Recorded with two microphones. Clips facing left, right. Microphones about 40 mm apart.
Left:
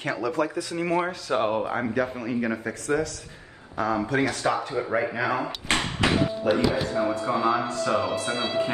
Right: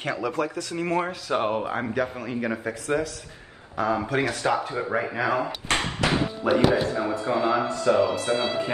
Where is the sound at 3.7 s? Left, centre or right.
Centre.